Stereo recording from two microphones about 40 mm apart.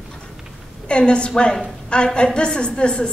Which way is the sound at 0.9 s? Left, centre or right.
Left.